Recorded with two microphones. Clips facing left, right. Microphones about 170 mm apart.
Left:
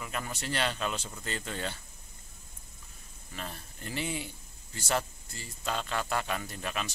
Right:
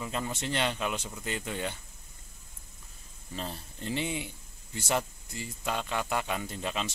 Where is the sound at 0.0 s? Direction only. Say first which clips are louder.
Right 3 dB; 25° right (ahead or behind).